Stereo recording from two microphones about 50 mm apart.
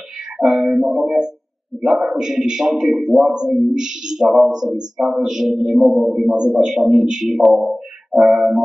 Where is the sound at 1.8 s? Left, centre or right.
Centre.